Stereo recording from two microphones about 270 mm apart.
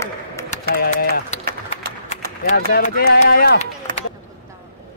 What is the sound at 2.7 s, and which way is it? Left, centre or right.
Speech, left.